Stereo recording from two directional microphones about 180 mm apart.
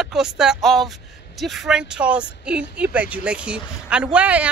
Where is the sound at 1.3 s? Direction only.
Centre (ahead or behind).